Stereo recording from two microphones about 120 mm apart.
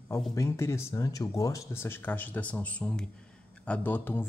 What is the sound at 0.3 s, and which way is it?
Speech, 25° left (ahead or behind).